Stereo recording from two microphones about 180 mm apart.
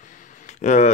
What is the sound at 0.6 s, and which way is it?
Speech, 40° left (ahead or behind).